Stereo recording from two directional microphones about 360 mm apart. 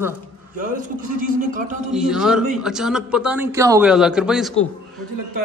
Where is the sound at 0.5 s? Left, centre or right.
Right.